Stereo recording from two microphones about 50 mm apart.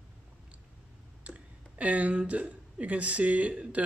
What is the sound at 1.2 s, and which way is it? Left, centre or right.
Speech, right.